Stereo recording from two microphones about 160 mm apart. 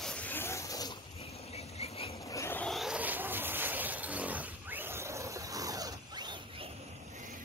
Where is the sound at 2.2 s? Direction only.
20° left (ahead or behind).